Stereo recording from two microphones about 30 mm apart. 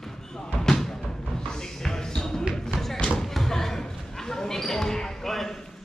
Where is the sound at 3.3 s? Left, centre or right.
Centre.